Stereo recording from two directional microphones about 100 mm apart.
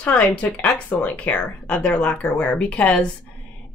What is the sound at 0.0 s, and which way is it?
Speech, 15° left (ahead or behind).